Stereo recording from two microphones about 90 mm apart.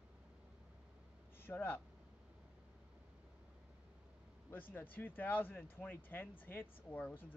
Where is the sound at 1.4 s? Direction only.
25° left (ahead or behind).